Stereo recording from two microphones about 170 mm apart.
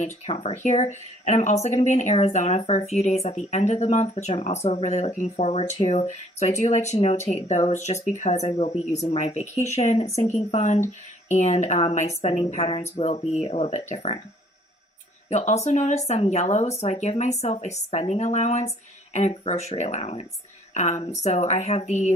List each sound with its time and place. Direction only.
0.3 s speech: 35° left (ahead or behind)
15.2 s speech: 40° left (ahead or behind)